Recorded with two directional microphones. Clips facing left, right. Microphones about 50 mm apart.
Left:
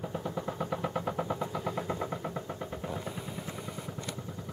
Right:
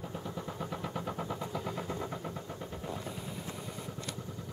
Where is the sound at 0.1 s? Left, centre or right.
Centre.